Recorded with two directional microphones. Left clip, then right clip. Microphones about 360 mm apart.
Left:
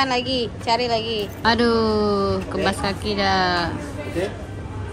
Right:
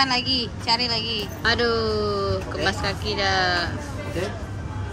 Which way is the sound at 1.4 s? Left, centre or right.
Centre.